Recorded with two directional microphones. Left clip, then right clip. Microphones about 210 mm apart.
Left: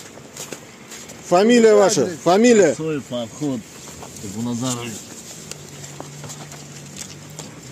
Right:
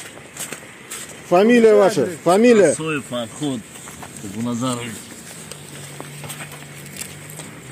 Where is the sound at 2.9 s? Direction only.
10° left (ahead or behind).